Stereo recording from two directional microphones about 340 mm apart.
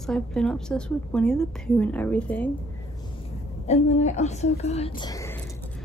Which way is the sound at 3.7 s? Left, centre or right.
Centre.